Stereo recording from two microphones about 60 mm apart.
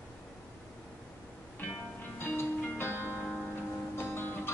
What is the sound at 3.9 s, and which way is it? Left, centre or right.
Music, left.